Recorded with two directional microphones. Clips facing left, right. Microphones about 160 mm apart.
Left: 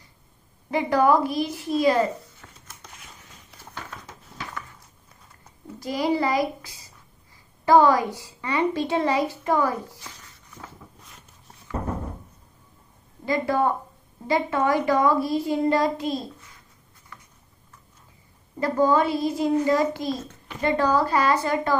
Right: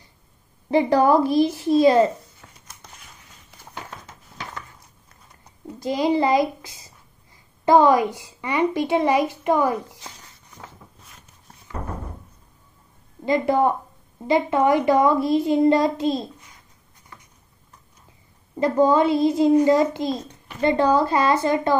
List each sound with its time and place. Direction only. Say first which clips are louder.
0.7 s a child's voice: right 3 dB; 30° right (ahead or behind)
5.7 s a child's voice: right 3 dB; 20° right (ahead or behind)
13.2 s a child's voice: right 4 dB; 20° right (ahead or behind)
18.6 s a child's voice: right 3 dB; 20° right (ahead or behind)